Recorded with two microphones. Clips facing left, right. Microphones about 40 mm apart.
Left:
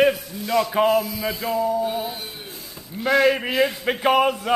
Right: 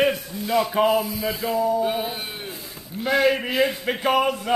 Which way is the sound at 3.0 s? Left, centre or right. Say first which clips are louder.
Left 2 dB; centre.